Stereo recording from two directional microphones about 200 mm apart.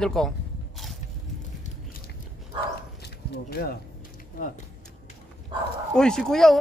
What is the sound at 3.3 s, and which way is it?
Speech, 50° left (ahead or behind).